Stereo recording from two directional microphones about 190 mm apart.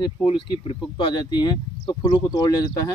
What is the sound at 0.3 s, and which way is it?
Speech, 25° left (ahead or behind).